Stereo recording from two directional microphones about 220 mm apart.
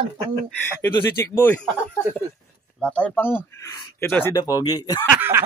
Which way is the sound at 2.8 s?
5° left (ahead or behind).